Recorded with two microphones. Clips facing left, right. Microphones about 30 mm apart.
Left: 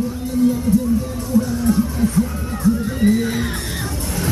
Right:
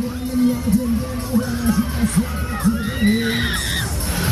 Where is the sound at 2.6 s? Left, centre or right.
Right.